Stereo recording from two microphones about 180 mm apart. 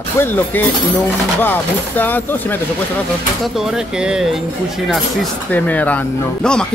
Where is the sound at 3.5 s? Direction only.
5° right (ahead or behind).